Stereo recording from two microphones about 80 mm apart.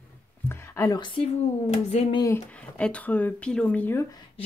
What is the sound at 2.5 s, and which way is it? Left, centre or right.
Speech, centre.